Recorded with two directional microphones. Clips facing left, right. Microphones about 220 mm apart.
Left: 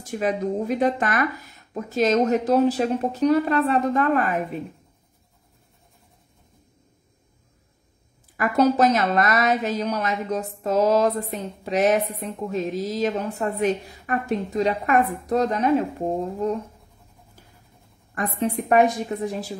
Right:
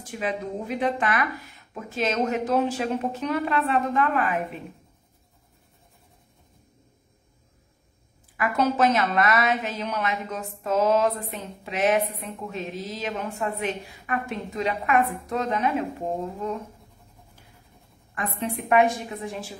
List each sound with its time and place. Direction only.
0.2 s a woman's voice: 45° left (ahead or behind)
8.4 s a woman's voice: 40° left (ahead or behind)
18.1 s a woman's voice: 40° left (ahead or behind)